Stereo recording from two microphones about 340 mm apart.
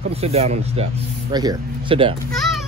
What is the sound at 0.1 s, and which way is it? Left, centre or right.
Speech, centre.